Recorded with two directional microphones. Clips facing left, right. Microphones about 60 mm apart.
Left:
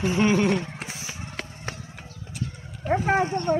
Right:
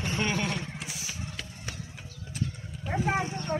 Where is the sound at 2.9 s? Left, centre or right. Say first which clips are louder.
Left 7 dB; left.